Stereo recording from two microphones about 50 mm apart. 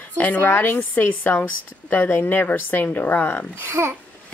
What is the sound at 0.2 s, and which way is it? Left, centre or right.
A woman's voice, left.